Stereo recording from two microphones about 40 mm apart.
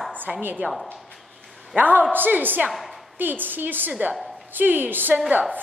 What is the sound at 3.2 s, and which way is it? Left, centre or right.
A woman's voice, right.